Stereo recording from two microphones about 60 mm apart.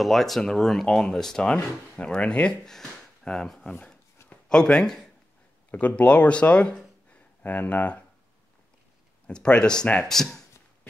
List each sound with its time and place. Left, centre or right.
0.0 s speech: centre
2.6 s speech: centre
5.7 s speech: left
9.3 s speech: centre